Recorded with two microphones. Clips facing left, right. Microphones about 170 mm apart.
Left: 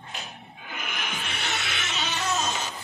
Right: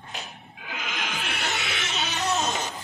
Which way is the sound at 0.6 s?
90° right.